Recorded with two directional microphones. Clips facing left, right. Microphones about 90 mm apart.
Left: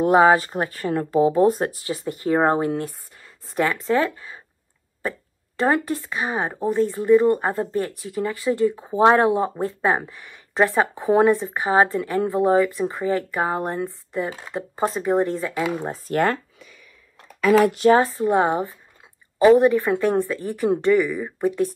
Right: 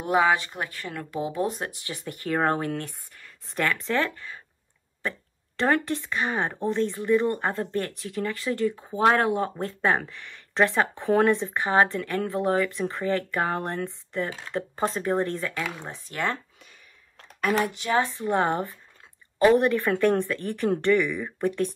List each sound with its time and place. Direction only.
0.0 s speech: 40° left (ahead or behind); by 4.4 s 20° left (ahead or behind)
5.6 s speech: 15° left (ahead or behind)
15.9 s speech: 50° left (ahead or behind)
17.6 s speech: 50° left (ahead or behind)
17.9 s speech: 35° left (ahead or behind)
18.2 s speech: 15° left (ahead or behind)